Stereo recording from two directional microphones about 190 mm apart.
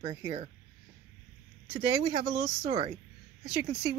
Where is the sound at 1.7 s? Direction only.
25° right (ahead or behind).